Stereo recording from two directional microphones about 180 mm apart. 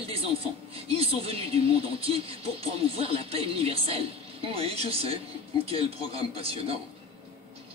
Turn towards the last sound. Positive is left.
turn(degrees=-30)  # may be behind; listen again after turning